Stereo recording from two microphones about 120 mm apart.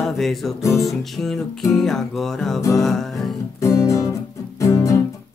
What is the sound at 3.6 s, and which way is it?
Music, 25° left (ahead or behind).